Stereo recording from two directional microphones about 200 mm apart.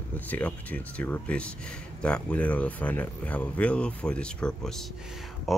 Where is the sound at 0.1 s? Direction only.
10° left (ahead or behind).